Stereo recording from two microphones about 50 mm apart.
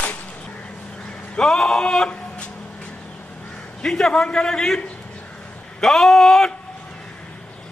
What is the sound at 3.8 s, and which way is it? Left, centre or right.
Speech, centre.